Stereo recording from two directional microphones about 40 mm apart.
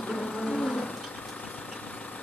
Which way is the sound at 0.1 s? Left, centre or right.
Centre.